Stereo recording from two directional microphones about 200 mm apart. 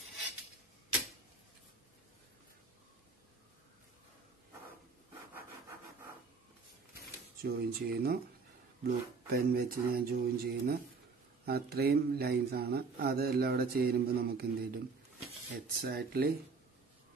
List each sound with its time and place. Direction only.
7.4 s speech: 50° right (ahead or behind)
15.8 s speech: 50° right (ahead or behind)